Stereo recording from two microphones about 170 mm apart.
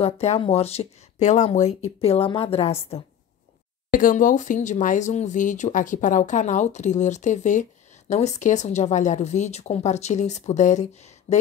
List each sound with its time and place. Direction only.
0.0 s speech: 35° left (ahead or behind)
3.9 s speech: 50° left (ahead or behind)